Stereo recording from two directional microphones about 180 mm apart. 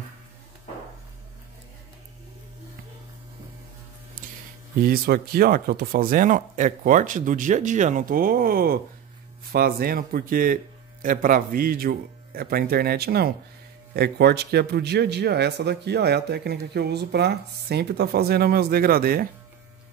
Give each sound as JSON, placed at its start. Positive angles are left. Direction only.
{"t": 4.8, "sound": "speech", "side_deg": -55}